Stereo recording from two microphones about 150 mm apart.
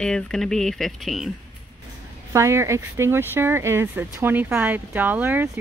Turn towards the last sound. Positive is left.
turn(degrees=-10)  # may be behind; listen again after turning